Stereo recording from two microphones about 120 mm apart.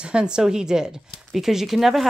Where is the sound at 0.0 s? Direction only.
5° right (ahead or behind).